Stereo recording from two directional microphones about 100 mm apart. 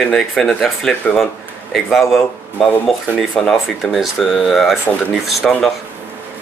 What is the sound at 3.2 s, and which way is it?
Speech, centre (ahead or behind).